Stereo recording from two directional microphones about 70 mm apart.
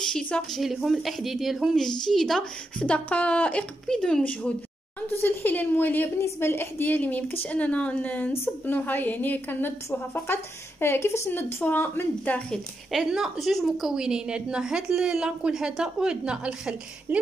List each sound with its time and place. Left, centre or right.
0.0 s a woman's voice: centre
0.6 s speech: centre
1.8 s speech: centre
2.8 s a woman's voice: centre
3.8 s speech: centre
4.2 s a woman's voice: left
12.9 s a woman's voice: centre